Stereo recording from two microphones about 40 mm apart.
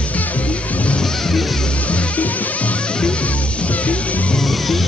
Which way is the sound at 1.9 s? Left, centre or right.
Left.